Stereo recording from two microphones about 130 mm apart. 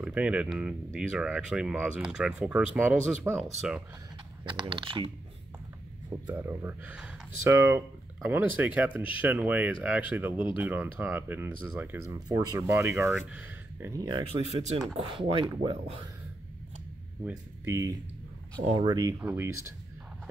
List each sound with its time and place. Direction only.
0.0 s speech: 10° right (ahead or behind)
4.5 s speech: 40° right (ahead or behind)
6.3 s speech: 20° right (ahead or behind)
12.1 s speech: 25° right (ahead or behind)
14.4 s speech: 55° right (ahead or behind)
15.1 s speech: 40° right (ahead or behind)
17.6 s speech: 25° right (ahead or behind)
19.2 s speech: 20° right (ahead or behind)